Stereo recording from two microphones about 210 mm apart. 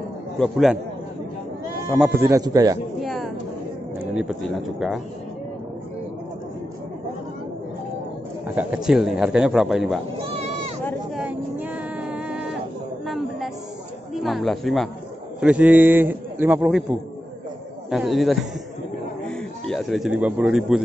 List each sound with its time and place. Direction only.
0.4 s a man's voice: centre (ahead or behind)
1.9 s a man's voice: 5° right (ahead or behind)
3.0 s a sound: centre (ahead or behind)
4.1 s a man's voice: 5° right (ahead or behind)
8.5 s a man's voice: 5° right (ahead or behind)
10.3 s sheep: 30° right (ahead or behind)
11.1 s vehicle: 10° right (ahead or behind)
13.0 s a sound: centre (ahead or behind)
14.1 s a man's voice: centre (ahead or behind)
17.8 s a man's voice: centre (ahead or behind)